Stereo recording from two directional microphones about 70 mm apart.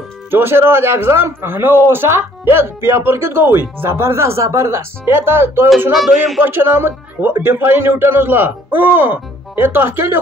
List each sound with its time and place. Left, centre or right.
0.3 s a man's voice: right
5.9 s speech: centre
6.4 s a man's voice: right